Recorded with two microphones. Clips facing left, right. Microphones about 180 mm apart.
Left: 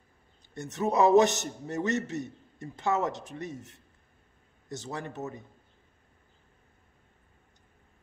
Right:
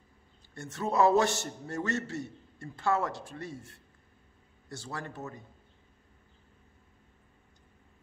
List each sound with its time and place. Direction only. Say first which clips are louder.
0.6 s a man's voice: left 2 dB; 20° left (ahead or behind)